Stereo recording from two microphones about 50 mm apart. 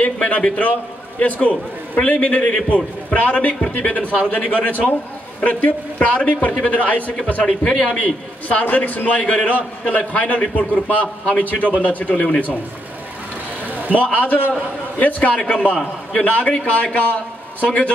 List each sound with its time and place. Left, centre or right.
0.0 s a man's voice: left
13.7 s a sound: right
14.1 s a man's voice: left